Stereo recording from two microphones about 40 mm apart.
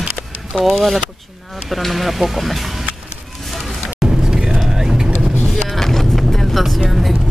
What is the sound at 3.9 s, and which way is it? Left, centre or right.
Vehicle, centre.